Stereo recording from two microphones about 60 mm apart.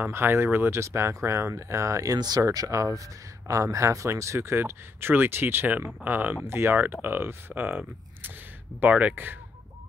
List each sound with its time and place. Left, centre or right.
0.0 s speech: right
0.7 s speech: right
6.4 s speech: right